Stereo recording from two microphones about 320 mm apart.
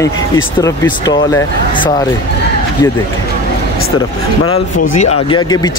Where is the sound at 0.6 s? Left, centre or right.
Centre.